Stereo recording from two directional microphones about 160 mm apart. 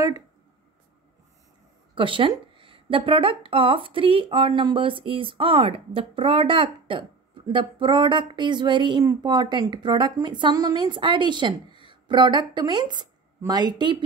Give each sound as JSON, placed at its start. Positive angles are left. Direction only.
{"t": 2.0, "sound": "speech", "side_deg": -30}